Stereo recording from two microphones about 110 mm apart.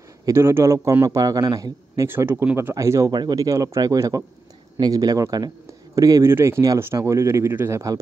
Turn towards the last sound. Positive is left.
turn(degrees=-30)  # may be behind; listen again after turning